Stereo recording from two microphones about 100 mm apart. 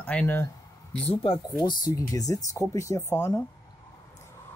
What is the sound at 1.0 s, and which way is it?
Speech, 65° left (ahead or behind).